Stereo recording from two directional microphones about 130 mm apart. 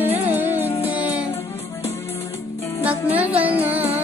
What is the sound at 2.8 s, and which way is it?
Music, 10° right (ahead or behind).